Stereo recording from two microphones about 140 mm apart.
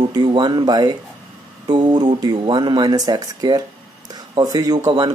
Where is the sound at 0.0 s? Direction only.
30° right (ahead or behind).